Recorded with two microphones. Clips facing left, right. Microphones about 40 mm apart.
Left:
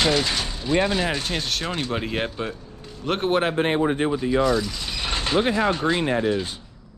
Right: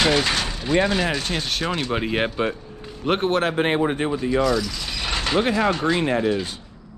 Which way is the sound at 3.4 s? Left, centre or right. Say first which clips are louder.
Right 1 dB; right.